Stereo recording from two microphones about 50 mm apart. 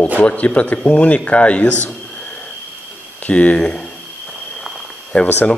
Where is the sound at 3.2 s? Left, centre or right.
Left.